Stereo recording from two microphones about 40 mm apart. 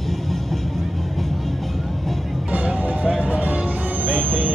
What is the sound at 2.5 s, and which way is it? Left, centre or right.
Music, right.